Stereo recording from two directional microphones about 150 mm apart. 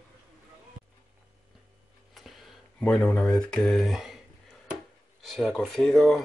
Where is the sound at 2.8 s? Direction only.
10° left (ahead or behind).